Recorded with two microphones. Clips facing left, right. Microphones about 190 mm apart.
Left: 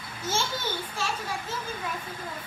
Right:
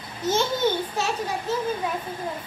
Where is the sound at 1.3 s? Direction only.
25° right (ahead or behind).